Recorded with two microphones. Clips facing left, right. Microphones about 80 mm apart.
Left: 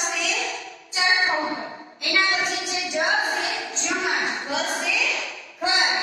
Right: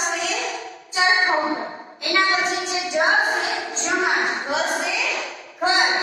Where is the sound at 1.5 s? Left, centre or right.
Right.